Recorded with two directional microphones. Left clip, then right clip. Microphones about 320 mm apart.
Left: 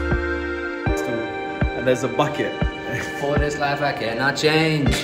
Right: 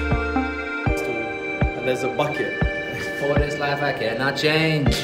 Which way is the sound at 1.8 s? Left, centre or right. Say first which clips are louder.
Left 4 dB; left.